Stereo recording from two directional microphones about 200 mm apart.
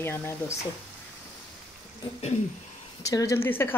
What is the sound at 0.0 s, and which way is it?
Speech, 10° left (ahead or behind).